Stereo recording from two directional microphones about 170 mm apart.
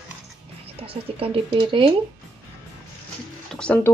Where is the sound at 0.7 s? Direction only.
35° right (ahead or behind).